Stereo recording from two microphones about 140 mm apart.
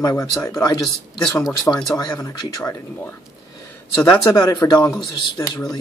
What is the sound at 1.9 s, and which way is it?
Speech, 25° left (ahead or behind).